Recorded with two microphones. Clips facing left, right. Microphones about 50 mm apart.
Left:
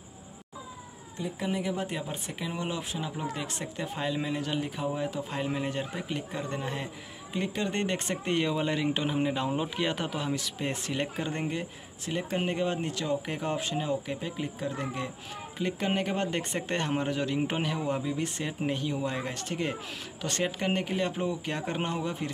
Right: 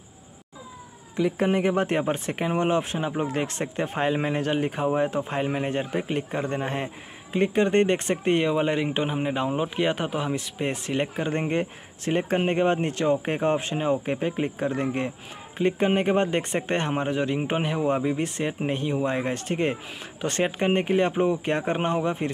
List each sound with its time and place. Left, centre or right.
1.4 s speech: right